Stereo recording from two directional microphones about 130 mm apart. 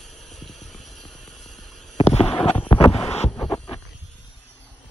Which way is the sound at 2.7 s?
40° left (ahead or behind).